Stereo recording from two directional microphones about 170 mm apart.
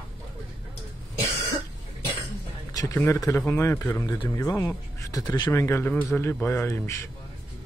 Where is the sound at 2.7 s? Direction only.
20° left (ahead or behind).